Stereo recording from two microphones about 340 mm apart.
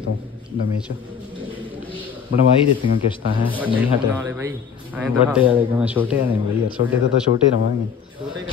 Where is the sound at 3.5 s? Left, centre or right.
Centre.